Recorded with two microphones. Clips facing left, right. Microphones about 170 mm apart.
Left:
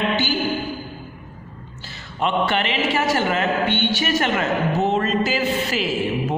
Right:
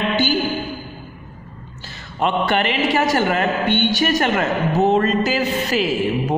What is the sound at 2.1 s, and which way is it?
A man's voice, 45° right (ahead or behind).